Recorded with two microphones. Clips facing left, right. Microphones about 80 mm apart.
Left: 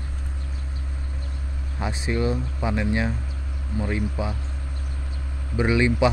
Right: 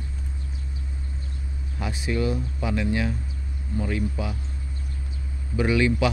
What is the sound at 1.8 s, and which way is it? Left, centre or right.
Speech, left.